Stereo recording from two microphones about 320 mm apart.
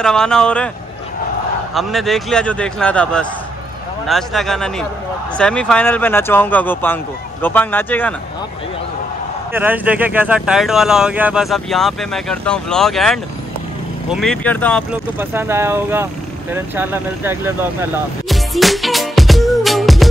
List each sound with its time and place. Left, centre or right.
0.0 s speech: centre
1.7 s speech: centre
9.5 s speech: centre
18.3 s music: centre